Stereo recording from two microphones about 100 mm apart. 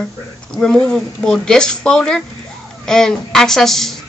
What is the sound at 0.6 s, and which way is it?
Speech, 5° left (ahead or behind).